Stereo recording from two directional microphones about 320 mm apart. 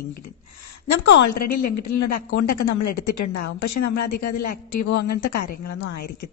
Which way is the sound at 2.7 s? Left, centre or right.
Left.